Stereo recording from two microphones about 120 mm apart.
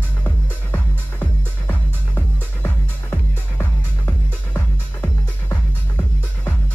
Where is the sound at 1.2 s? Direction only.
15° left (ahead or behind).